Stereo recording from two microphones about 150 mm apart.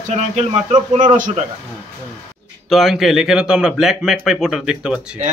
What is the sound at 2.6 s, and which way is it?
A man's voice, centre (ahead or behind).